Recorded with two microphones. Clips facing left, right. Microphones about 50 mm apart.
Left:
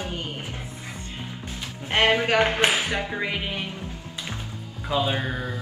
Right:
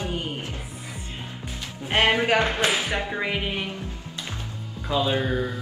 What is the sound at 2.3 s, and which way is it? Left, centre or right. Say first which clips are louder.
Speech: left 1 dB; left.